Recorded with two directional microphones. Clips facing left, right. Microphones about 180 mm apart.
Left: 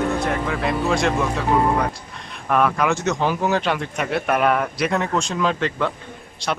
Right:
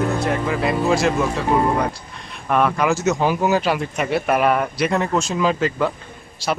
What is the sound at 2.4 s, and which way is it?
Speech, centre (ahead or behind).